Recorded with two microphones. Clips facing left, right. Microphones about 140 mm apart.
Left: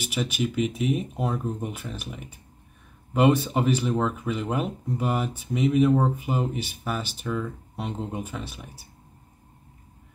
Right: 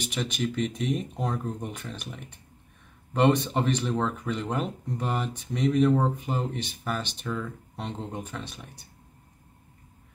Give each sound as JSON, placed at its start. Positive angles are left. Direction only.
{"t": 0.0, "sound": "speech", "side_deg": 5}